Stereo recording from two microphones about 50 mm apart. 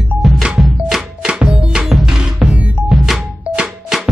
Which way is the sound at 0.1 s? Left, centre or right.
Right.